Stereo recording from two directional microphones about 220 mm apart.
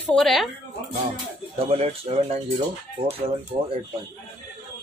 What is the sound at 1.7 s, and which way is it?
Speech, 30° right (ahead or behind).